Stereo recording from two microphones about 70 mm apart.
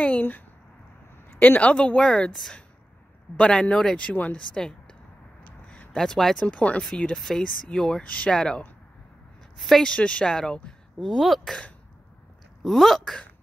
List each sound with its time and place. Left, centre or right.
0.0 s a sound: left
1.6 s speech: centre
3.3 s speech: centre
4.4 s speech: centre
5.7 s a sound: centre
6.4 s speech: centre
7.2 s speech: centre
8.0 s speech: centre
9.9 s speech: centre
11.1 s speech: centre
12.6 s speech: centre